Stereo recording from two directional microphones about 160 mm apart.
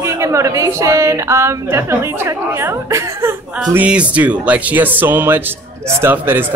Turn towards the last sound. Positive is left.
turn(degrees=-15)  # may be behind; listen again after turning